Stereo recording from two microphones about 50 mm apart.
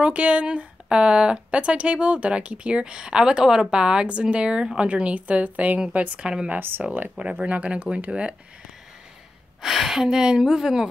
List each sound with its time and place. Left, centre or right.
0.0 s a woman's voice: right
9.6 s speech: centre